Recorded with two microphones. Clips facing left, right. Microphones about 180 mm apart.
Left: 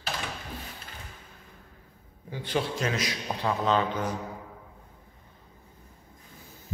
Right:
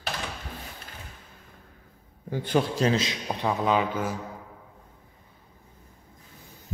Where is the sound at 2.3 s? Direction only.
50° right (ahead or behind).